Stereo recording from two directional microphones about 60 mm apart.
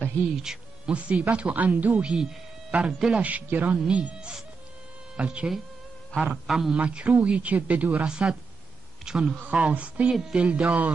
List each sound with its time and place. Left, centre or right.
0.4 s insect: centre
0.9 s speech: right
2.0 s speech: centre
3.2 s speech: right
6.3 s a man's voice: centre
6.7 s speech: centre
8.1 s a man's voice: centre
10.1 s speech: centre